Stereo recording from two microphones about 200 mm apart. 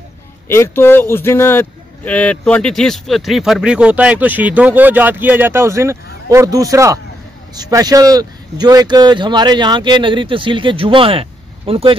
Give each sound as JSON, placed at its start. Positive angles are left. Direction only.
{"t": 0.5, "sound": "speech", "side_deg": 10}